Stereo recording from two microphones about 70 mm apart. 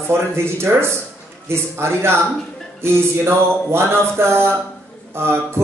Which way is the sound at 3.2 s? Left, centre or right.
Right.